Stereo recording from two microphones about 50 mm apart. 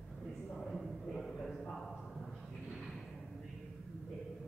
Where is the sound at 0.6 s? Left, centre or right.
Centre.